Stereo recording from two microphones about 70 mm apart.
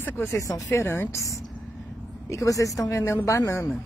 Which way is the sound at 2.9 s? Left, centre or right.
Left.